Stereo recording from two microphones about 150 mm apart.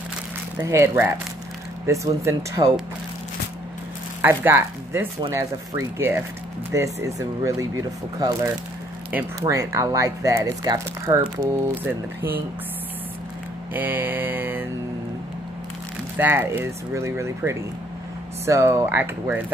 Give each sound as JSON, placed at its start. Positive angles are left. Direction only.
{"t": 0.6, "sound": "speech", "side_deg": -15}
{"t": 4.2, "sound": "speech", "side_deg": -15}
{"t": 11.8, "sound": "speech", "side_deg": -15}
{"t": 13.7, "sound": "speech", "side_deg": -10}
{"t": 16.2, "sound": "speech", "side_deg": -15}